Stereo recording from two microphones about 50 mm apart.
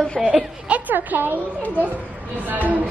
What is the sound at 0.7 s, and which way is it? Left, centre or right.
Speech, right.